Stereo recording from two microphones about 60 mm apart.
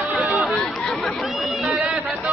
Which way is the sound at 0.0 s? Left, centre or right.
Right.